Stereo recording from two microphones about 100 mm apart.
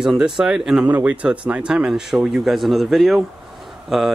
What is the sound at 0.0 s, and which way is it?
Speech, 5° right (ahead or behind).